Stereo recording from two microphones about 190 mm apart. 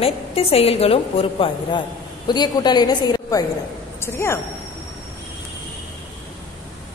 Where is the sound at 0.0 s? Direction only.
30° left (ahead or behind); by 4.4 s 15° left (ahead or behind).